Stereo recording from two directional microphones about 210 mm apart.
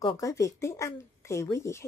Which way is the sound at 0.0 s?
15° left (ahead or behind).